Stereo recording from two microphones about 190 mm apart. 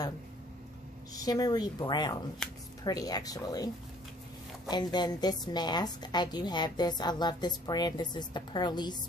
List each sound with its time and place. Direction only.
1.1 s a woman's voice: 20° left (ahead or behind)
2.4 s speech: 5° left (ahead or behind)
2.8 s a woman's voice: 20° left (ahead or behind)